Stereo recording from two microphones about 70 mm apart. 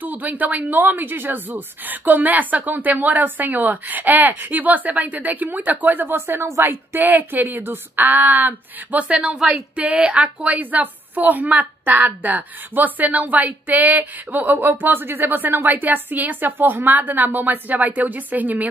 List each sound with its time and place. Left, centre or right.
0.0 s a woman's voice: right